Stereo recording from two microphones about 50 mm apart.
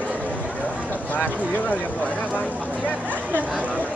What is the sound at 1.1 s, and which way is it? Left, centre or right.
Speech, left.